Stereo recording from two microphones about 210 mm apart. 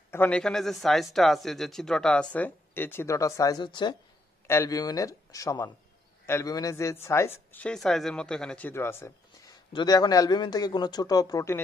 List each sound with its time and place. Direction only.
0.1 s a man's voice: 5° left (ahead or behind)